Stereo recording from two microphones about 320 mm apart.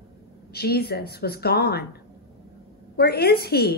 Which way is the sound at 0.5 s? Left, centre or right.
Left.